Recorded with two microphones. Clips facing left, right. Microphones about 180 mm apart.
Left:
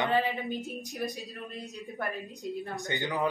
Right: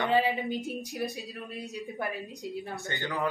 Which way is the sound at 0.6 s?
Centre (ahead or behind).